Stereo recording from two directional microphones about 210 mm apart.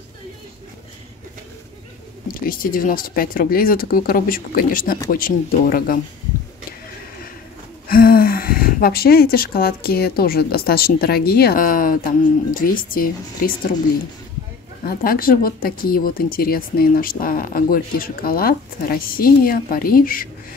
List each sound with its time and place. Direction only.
2.4 s speech: 45° left (ahead or behind)
7.9 s speech: 45° left (ahead or behind)
14.9 s speech: 45° left (ahead or behind)